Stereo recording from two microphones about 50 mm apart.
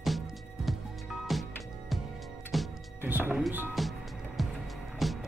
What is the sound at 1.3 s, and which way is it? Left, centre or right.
Music, centre.